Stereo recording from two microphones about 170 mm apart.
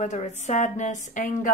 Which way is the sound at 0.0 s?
40° left (ahead or behind).